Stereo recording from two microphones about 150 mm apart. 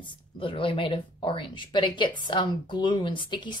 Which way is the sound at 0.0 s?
35° left (ahead or behind).